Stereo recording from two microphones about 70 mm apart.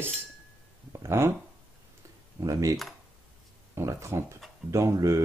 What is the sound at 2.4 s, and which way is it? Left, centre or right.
Speech, right.